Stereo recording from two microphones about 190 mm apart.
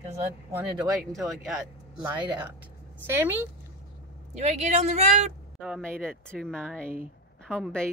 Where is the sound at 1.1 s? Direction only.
Centre (ahead or behind).